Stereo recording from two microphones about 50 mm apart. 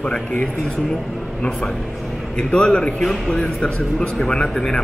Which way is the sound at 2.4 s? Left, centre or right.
Centre.